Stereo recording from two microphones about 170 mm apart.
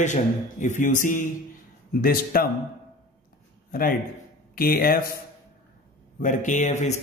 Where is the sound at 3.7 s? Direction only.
60° left (ahead or behind).